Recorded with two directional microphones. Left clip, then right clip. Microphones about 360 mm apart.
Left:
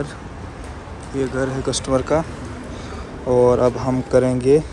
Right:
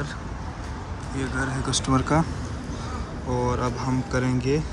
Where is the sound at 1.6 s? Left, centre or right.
Centre.